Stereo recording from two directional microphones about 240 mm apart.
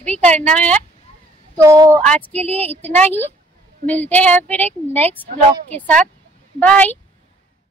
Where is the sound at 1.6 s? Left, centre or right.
Centre.